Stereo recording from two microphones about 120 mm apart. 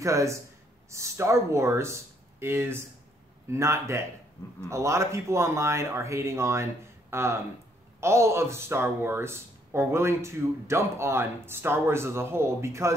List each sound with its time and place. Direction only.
0.0 s speech: 25° right (ahead or behind)